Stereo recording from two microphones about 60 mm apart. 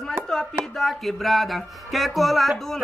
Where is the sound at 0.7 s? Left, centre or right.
Centre.